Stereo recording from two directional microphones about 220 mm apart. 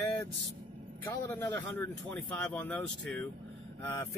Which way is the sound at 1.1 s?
15° left (ahead or behind).